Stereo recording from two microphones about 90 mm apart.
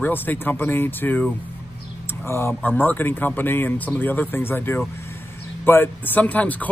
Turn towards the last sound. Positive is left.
turn(degrees=15)  # may be behind; listen again after turning